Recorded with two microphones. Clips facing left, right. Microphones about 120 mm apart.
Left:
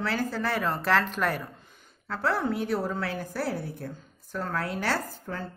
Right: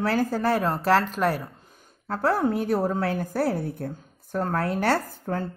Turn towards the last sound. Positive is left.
turn(degrees=-50)  # may be behind; listen again after turning